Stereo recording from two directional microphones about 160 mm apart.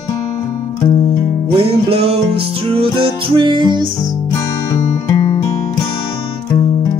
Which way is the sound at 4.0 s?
20° left (ahead or behind).